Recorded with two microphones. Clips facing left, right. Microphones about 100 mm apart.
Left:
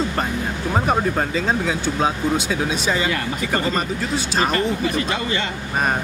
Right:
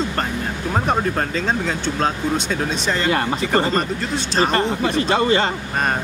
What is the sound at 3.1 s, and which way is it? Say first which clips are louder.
A man's voice: right 4 dB; 35° right (ahead or behind).